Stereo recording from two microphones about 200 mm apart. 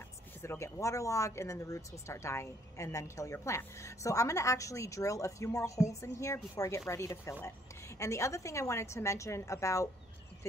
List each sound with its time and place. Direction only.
0.4 s speech: 15° left (ahead or behind)